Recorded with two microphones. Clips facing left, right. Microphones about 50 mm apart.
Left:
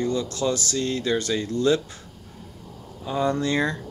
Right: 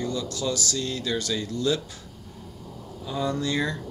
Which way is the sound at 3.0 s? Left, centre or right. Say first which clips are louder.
Left 4 dB; left.